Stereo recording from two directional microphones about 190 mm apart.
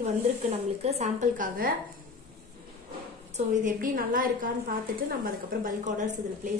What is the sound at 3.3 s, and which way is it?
A woman's voice, 45° right (ahead or behind).